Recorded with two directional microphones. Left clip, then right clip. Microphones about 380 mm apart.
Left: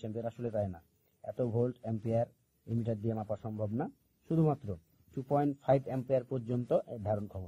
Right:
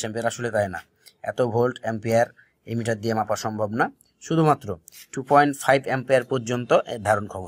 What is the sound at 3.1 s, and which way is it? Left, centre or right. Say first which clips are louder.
Speech: right 14 dB; right.